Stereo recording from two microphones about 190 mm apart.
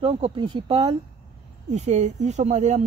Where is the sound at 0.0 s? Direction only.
25° right (ahead or behind).